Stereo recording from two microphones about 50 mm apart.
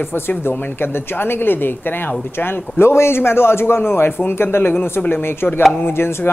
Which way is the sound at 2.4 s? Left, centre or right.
Left.